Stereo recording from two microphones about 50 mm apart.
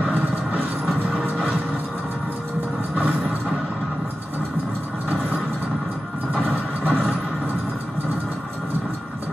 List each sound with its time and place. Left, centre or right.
6.8 s vehicle: left